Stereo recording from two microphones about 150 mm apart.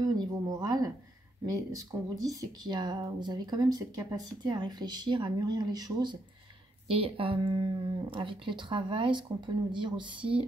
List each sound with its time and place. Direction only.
0.0 s a sound: 25° right (ahead or behind)
1.4 s speech: 25° right (ahead or behind)
6.9 s speech: 35° right (ahead or behind)